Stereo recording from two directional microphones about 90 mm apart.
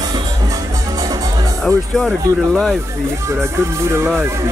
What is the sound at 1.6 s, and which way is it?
A man's voice, 5° left (ahead or behind).